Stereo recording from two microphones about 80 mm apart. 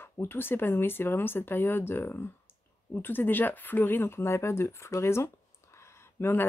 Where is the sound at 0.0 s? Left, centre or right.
Left.